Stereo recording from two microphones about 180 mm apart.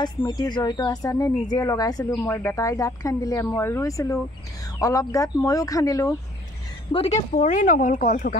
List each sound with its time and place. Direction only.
0.0 s speech: 20° left (ahead or behind)
6.9 s speech: 35° left (ahead or behind)